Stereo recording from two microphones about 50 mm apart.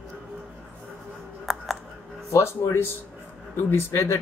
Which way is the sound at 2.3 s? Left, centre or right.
Left.